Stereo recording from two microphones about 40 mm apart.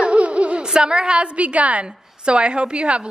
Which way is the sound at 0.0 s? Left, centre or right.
Right.